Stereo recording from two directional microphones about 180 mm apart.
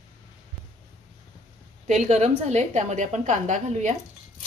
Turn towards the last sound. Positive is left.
turn(degrees=-40)  # may be behind; listen again after turning